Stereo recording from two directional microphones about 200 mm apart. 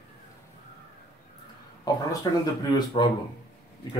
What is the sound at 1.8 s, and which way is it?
Speech, 20° left (ahead or behind).